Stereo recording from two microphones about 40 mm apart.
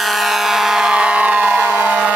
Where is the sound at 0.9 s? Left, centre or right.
Right.